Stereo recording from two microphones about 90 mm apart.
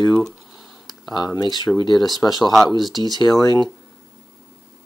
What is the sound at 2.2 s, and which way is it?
Speech, 35° left (ahead or behind).